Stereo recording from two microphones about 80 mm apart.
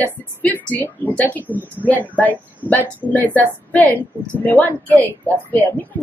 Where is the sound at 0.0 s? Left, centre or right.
Left.